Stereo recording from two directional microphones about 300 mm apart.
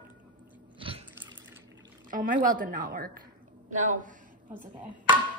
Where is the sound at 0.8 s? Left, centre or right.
Centre.